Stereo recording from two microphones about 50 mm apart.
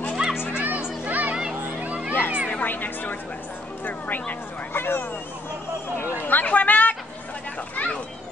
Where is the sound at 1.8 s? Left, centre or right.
Right.